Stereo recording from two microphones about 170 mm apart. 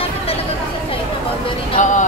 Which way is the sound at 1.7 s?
45° left (ahead or behind).